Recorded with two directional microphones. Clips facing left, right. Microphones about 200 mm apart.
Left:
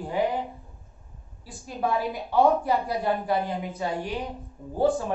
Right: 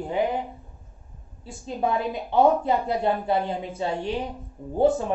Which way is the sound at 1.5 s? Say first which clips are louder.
Right 2 dB; 25° right (ahead or behind).